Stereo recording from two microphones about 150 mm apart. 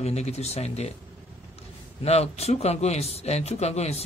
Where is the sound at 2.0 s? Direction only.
45° left (ahead or behind).